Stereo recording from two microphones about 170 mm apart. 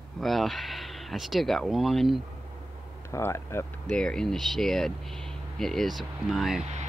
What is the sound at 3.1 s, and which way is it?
Speech, 15° left (ahead or behind).